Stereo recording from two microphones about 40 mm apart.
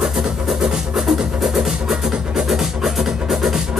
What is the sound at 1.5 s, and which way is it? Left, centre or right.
Music, centre.